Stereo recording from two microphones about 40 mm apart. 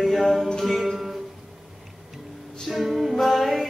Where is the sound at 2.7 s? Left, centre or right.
Centre.